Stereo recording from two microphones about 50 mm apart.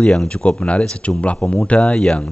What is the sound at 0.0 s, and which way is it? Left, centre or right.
Speech, centre.